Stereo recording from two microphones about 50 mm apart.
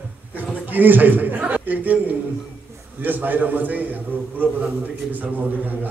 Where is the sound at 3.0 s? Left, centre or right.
Right.